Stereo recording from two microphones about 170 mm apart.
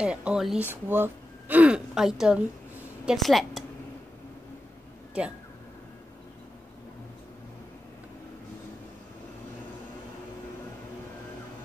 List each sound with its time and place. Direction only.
0.0 s a woman's voice: 5° right (ahead or behind)